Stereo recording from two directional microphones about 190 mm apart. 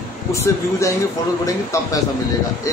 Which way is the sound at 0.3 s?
15° left (ahead or behind).